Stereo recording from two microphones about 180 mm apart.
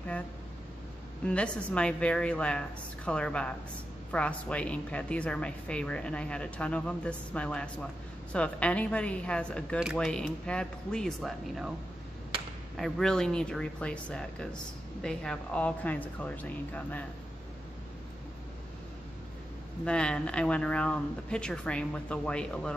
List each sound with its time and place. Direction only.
1.2 s a woman's voice: 5° left (ahead or behind)
12.7 s a woman's voice: centre (ahead or behind)
19.8 s a woman's voice: 5° left (ahead or behind)